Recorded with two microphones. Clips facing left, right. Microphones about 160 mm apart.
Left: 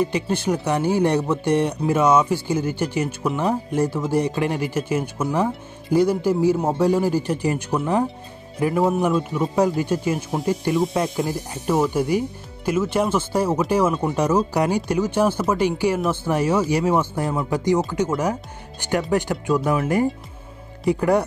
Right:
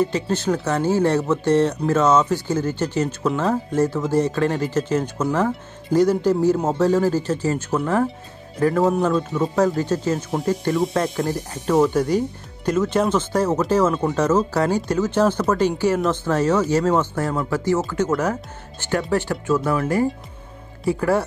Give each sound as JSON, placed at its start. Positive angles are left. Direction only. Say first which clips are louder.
{"t": 0.0, "sound": "speech", "louder": "right 1 dB", "side_deg": 10}
{"t": 20.8, "sound": "speech", "louder": "left 1 dB", "side_deg": 15}